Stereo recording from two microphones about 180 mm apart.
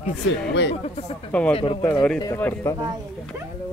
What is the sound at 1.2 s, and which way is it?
Speech, 5° left (ahead or behind).